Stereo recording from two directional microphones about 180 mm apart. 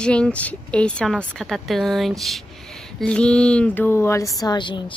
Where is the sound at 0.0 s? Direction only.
5° left (ahead or behind).